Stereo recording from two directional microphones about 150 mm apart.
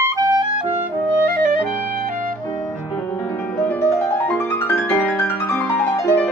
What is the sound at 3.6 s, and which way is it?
Music, 10° left (ahead or behind).